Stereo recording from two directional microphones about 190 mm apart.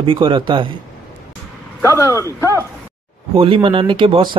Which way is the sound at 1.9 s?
15° right (ahead or behind).